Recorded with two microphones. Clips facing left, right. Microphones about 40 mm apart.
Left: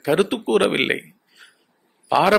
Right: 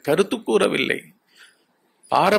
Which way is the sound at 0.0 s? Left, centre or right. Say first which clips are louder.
Even; centre.